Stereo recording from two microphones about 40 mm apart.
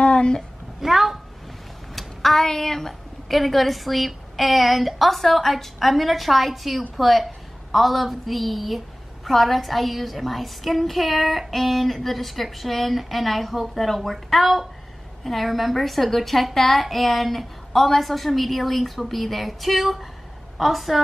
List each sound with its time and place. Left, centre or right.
0.0 s a sound: left
0.7 s a woman's voice: centre
2.0 s a woman's voice: centre